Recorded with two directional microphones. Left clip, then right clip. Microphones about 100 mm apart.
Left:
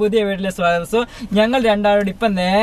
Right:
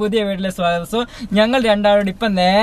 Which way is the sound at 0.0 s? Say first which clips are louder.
Left 2 dB; 15° right (ahead or behind).